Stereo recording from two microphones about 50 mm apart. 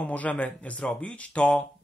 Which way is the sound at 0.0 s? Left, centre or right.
Left.